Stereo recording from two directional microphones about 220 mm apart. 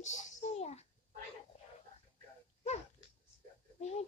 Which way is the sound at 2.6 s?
30° left (ahead or behind).